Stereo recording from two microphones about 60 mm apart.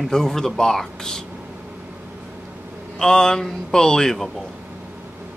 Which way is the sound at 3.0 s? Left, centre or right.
Centre.